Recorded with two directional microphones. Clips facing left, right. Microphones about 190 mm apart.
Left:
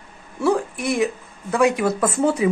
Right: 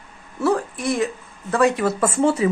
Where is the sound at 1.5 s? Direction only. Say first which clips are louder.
Even; 15° left (ahead or behind).